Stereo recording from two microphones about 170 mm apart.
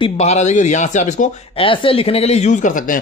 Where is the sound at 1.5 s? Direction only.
30° left (ahead or behind); by 3.0 s 50° left (ahead or behind).